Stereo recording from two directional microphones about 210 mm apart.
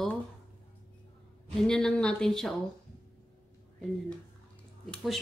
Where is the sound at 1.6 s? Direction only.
5° left (ahead or behind).